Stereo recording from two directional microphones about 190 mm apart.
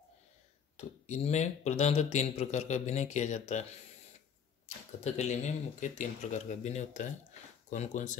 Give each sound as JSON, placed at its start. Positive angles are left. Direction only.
{"t": 0.7, "sound": "speech", "side_deg": 40}
{"t": 4.6, "sound": "speech", "side_deg": 35}